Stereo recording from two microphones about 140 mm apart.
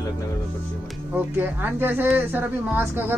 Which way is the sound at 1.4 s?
15° right (ahead or behind).